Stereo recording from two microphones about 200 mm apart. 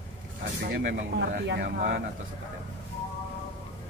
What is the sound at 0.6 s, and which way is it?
Speech, 55° right (ahead or behind).